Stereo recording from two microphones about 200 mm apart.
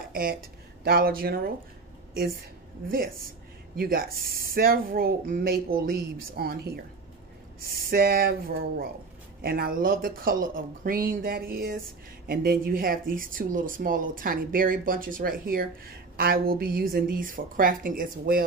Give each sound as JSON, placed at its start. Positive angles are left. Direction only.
{"t": 0.1, "sound": "speech", "side_deg": -45}
{"t": 3.7, "sound": "speech", "side_deg": -45}